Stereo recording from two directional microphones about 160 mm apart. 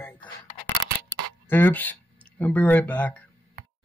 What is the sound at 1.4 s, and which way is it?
Speech, 15° left (ahead or behind).